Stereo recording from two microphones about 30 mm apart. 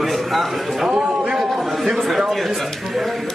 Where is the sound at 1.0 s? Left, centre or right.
Right.